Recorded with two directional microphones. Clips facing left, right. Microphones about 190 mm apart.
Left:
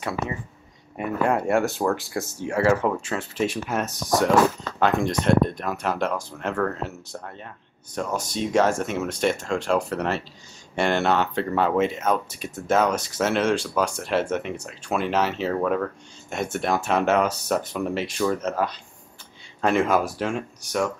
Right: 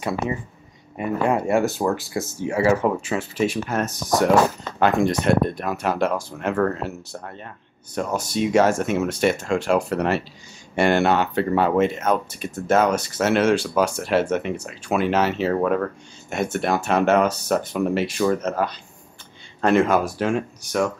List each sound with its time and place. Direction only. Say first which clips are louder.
0.9 s speech: right 2 dB; centre (ahead or behind)